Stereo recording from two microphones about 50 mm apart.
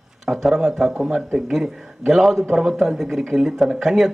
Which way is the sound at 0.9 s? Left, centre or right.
Right.